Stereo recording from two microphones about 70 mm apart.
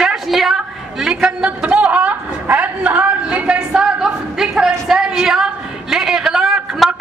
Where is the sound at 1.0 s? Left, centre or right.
Centre.